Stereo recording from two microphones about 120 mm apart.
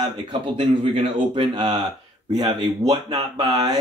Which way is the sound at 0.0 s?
45° right (ahead or behind).